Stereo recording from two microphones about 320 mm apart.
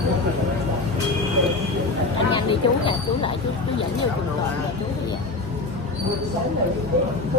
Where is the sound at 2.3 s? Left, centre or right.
Centre.